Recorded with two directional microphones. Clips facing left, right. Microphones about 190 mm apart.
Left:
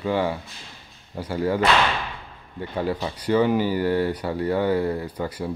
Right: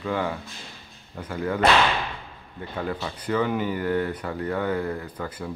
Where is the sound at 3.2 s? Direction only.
30° left (ahead or behind).